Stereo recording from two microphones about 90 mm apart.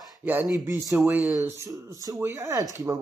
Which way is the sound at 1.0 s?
20° right (ahead or behind).